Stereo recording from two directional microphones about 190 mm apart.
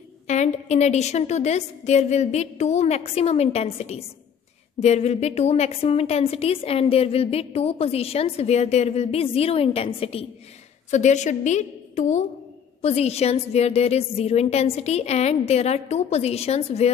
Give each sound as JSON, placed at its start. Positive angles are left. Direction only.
{"t": 0.3, "sound": "a woman's voice", "side_deg": 35}